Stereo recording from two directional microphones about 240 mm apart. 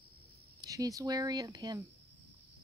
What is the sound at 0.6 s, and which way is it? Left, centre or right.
Speech, centre.